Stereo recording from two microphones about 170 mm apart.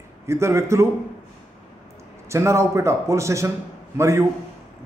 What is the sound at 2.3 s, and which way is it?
A man's voice, 15° right (ahead or behind).